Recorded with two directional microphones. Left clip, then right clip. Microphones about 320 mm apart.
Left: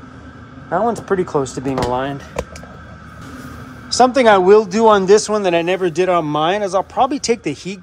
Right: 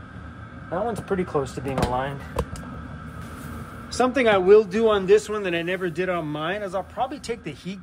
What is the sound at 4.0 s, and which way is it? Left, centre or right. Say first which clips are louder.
Speech: left 9 dB; centre.